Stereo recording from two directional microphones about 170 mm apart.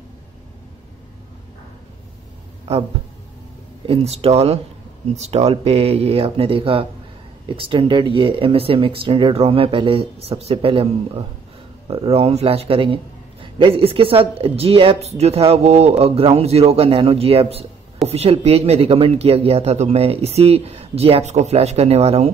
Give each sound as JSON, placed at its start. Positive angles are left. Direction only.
{"t": 3.8, "sound": "speech", "side_deg": -35}